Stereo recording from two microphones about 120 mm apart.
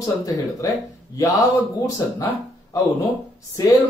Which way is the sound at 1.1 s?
30° left (ahead or behind).